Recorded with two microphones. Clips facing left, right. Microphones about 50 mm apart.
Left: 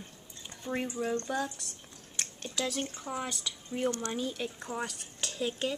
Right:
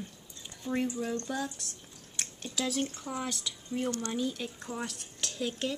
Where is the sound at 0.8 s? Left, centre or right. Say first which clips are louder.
Left 1 dB; left.